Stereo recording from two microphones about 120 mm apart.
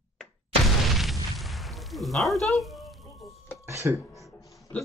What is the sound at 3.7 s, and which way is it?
Speech, 25° right (ahead or behind).